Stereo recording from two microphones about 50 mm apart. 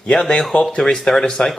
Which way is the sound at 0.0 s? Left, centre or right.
Centre.